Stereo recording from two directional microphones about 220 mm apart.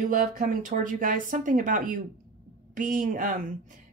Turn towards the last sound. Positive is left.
turn(degrees=-35)  # may be behind; listen again after turning